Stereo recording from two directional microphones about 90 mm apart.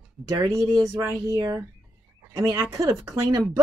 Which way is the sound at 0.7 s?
45° right (ahead or behind).